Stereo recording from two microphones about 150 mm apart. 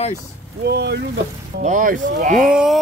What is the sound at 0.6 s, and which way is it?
Speech, 90° right.